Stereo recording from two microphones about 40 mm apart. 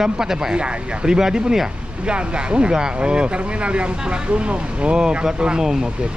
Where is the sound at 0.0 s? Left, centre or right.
Centre.